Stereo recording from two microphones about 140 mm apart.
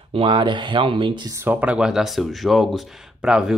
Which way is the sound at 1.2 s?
20° right (ahead or behind).